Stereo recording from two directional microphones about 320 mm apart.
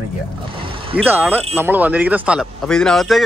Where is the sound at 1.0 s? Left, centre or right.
Centre.